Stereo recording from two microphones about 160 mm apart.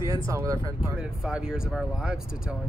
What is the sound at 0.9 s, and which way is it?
Speech, 5° right (ahead or behind).